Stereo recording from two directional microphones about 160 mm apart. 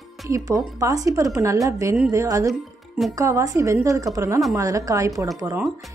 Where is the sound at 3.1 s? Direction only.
20° right (ahead or behind).